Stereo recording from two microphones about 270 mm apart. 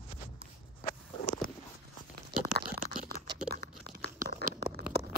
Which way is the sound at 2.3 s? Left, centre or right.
Right.